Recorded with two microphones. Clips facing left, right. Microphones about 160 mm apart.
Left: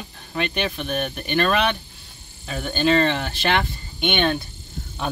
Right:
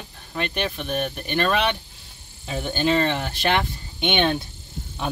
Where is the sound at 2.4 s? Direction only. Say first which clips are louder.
Left 1 dB; 15° right (ahead or behind).